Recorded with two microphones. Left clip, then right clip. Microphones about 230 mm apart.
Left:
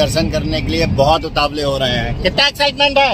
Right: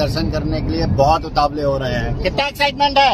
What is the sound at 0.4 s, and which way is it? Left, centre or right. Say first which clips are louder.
Speech: left 4 dB; left.